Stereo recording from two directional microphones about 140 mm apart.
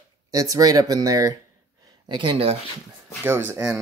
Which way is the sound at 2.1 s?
40° right (ahead or behind).